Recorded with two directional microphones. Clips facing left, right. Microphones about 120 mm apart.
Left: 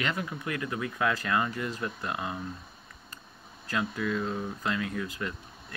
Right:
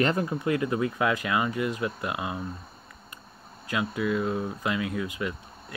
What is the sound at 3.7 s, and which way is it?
Speech, 10° right (ahead or behind).